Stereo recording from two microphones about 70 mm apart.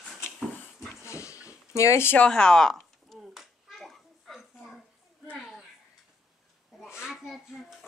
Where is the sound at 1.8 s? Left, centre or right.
Left.